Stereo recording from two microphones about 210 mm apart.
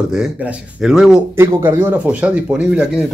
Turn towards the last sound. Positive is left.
turn(degrees=-5)  # may be behind; listen again after turning